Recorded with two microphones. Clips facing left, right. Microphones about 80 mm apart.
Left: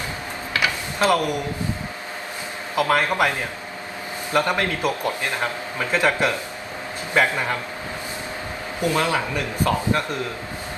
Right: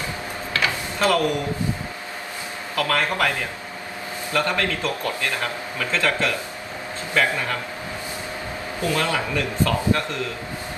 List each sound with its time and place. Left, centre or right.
0.5 s tick-tock: left
2.7 s a man's voice: left
4.3 s a man's voice: left
8.8 s a man's voice: left